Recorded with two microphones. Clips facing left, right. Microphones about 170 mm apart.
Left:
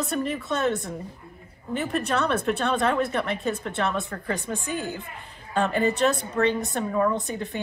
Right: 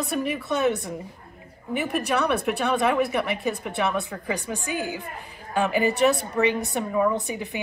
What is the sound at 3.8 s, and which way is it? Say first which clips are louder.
A woman's voice: right 2 dB; 5° right (ahead or behind).